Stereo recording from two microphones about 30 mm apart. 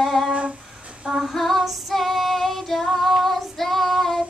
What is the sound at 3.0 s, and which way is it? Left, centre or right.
Child singing, centre.